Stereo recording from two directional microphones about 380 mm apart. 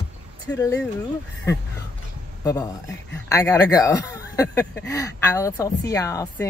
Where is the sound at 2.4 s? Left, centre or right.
Centre.